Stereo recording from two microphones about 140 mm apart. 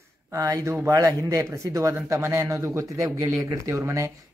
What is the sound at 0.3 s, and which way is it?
Speech, 25° right (ahead or behind).